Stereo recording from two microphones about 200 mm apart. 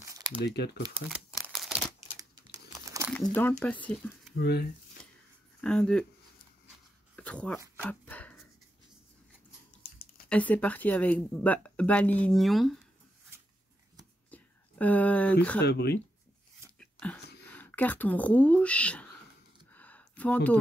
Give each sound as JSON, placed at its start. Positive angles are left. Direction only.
{"t": 0.0, "sound": "crumpling", "side_deg": -15}
{"t": 0.5, "sound": "speech", "side_deg": 55}
{"t": 1.0, "sound": "crumpling", "side_deg": -5}
{"t": 2.1, "sound": "crumpling", "side_deg": -15}
{"t": 3.3, "sound": "speech", "side_deg": 10}
{"t": 4.4, "sound": "speech", "side_deg": 55}
{"t": 5.6, "sound": "speech", "side_deg": 5}
{"t": 7.2, "sound": "a sound", "side_deg": 5}
{"t": 7.7, "sound": "dog", "side_deg": 10}
{"t": 10.3, "sound": "speech", "side_deg": 5}
{"t": 14.3, "sound": "a sound", "side_deg": 10}
{"t": 15.6, "sound": "speech", "side_deg": 55}
{"t": 17.5, "sound": "speech", "side_deg": 10}
{"t": 19.7, "sound": "a sound", "side_deg": 5}